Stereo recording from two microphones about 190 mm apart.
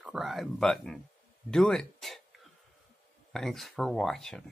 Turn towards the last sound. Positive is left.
turn(degrees=0)  # may be behind; listen again after turning